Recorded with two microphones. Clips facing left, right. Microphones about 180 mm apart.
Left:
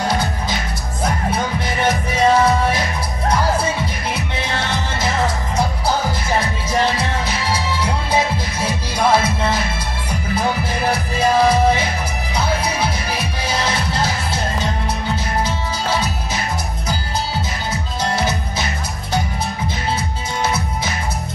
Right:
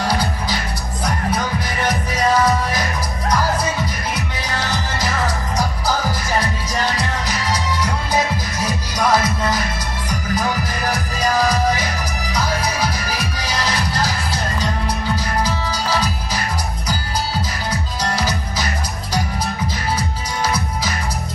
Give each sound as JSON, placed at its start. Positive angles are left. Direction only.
{"t": 0.1, "sound": "music", "side_deg": 25}
{"t": 18.1, "sound": "music", "side_deg": 25}